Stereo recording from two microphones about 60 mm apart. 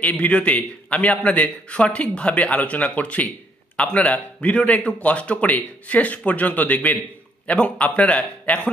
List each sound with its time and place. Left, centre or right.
0.0 s a man's voice: left